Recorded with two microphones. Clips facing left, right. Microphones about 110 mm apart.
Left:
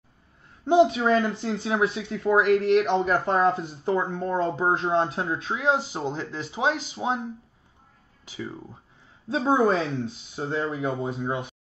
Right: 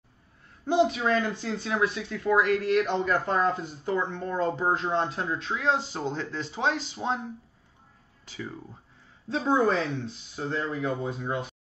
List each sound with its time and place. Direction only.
0.7 s speech: 25° left (ahead or behind)
5.7 s speech: 10° left (ahead or behind)
8.3 s speech: 10° left (ahead or behind)
9.3 s speech: 25° left (ahead or behind)